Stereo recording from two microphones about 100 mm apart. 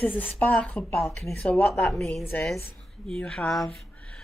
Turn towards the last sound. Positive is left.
turn(degrees=5)  # may be behind; listen again after turning